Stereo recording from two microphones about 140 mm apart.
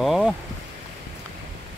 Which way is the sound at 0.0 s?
Centre (ahead or behind).